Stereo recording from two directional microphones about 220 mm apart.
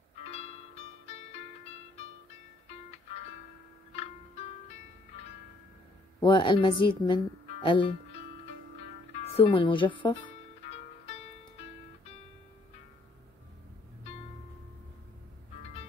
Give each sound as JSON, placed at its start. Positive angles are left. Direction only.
{"t": 0.2, "sound": "music", "side_deg": 30}
{"t": 3.9, "sound": "music", "side_deg": 30}
{"t": 6.2, "sound": "a woman's voice", "side_deg": 20}
{"t": 9.2, "sound": "speech", "side_deg": 25}
{"t": 10.7, "sound": "music", "side_deg": 30}